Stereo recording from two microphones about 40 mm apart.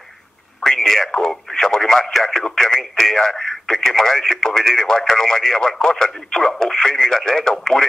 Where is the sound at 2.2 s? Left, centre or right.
Centre.